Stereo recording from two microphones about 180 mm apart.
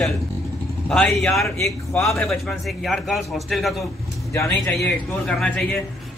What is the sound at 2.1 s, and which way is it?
Speech, centre (ahead or behind).